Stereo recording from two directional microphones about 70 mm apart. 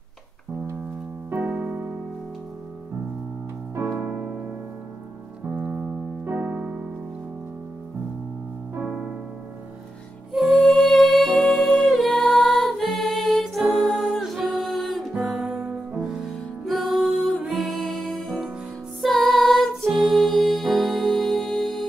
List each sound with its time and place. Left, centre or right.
1.3 s keyboard: right
4.0 s keyboard: right
5.5 s keyboard: centre
8.7 s piano: right
10.3 s music: centre